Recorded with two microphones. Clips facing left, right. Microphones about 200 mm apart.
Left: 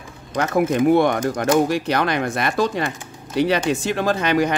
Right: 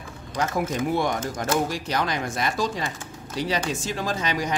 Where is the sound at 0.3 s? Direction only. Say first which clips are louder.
Left 7 dB; 60° left (ahead or behind).